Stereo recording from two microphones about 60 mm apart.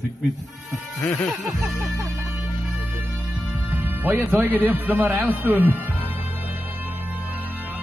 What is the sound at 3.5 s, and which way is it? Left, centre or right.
A man's voice, right.